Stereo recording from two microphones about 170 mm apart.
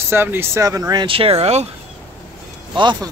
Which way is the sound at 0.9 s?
30° right (ahead or behind).